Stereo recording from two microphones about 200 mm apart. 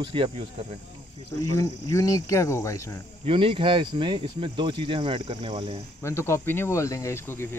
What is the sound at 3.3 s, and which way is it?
Speech, 25° right (ahead or behind).